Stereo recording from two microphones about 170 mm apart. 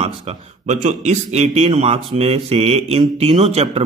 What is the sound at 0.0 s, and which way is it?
A man's voice, 35° right (ahead or behind).